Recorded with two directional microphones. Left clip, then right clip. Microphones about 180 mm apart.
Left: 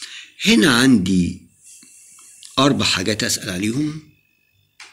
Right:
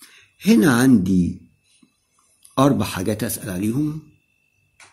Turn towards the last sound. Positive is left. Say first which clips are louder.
# left 2 dB
turn(degrees=-45)  # may be behind; listen again after turning